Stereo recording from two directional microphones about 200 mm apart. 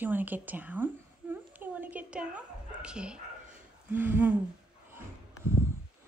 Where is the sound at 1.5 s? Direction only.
10° right (ahead or behind).